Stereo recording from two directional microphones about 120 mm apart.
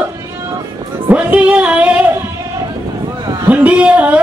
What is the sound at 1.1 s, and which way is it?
Music, 10° right (ahead or behind).